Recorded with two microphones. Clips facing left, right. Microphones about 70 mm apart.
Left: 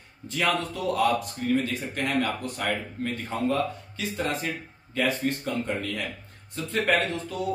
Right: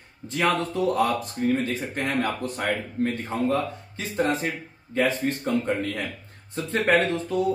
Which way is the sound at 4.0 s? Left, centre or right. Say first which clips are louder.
Right 4 dB; right.